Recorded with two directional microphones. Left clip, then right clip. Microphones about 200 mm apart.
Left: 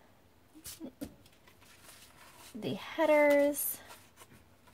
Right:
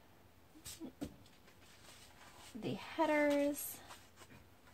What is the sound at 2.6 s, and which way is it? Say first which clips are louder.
Speech: left 5 dB; 50° left (ahead or behind).